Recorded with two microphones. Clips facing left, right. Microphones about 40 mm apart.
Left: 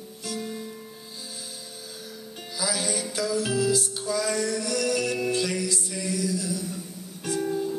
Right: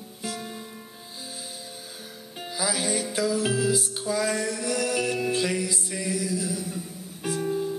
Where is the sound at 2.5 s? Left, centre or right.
Centre.